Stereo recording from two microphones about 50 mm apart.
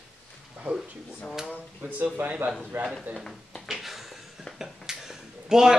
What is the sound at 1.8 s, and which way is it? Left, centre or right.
A man's voice, right.